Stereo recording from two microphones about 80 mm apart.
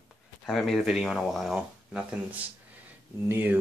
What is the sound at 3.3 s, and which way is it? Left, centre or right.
Speech, right.